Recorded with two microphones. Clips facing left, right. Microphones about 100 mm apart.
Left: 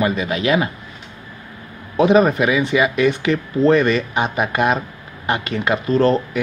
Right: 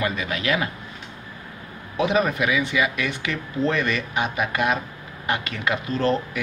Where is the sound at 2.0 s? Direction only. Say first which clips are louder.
Left 8 dB; 30° left (ahead or behind).